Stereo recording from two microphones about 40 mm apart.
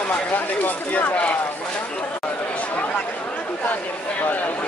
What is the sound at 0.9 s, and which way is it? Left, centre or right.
Speech, left.